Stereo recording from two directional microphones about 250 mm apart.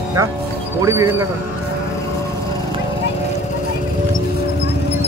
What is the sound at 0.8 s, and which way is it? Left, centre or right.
Speech, centre.